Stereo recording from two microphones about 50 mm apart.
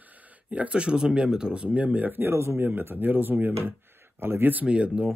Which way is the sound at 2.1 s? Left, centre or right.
Right.